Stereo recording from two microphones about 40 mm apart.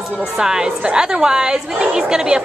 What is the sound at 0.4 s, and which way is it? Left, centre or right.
A woman's voice, centre.